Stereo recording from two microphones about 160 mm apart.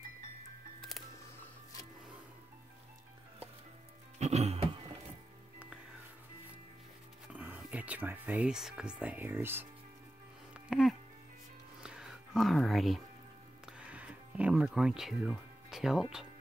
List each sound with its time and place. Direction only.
4.2 s music: 40° right (ahead or behind)
7.2 s music: 10° right (ahead or behind)